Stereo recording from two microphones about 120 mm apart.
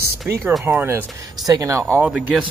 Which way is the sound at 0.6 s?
15° right (ahead or behind).